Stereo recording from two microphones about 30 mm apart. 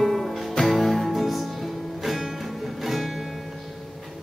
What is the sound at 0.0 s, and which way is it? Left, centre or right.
Music, centre.